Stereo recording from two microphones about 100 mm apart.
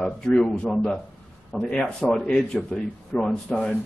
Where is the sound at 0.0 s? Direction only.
10° left (ahead or behind).